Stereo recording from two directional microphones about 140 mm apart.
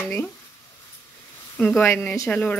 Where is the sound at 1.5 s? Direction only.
5° left (ahead or behind).